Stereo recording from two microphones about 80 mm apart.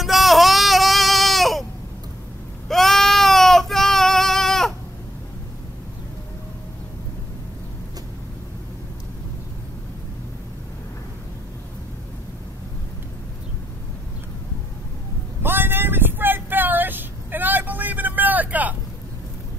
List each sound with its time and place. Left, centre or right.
0.0 s a sound: centre
2.7 s child singing: centre
15.4 s vehicle: right